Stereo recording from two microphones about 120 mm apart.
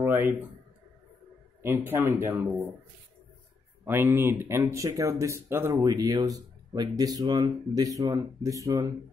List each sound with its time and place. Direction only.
0.0 s a sound: 15° right (ahead or behind)
1.6 s speech: 20° right (ahead or behind)
3.8 s speech: 15° right (ahead or behind)